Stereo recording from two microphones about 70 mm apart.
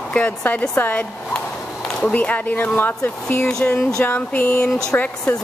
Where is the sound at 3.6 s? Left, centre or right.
Centre.